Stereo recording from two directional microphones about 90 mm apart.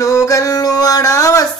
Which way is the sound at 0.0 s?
40° left (ahead or behind).